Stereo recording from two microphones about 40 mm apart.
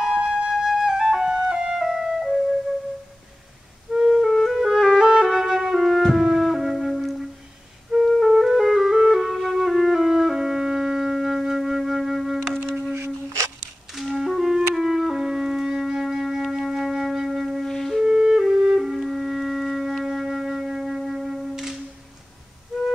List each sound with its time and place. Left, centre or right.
0.1 s flute: right
0.5 s flute: centre
1.3 s music: centre
4.0 s music: centre
9.1 s flute: centre
13.9 s music: centre
17.6 s flute: centre
18.0 s music: centre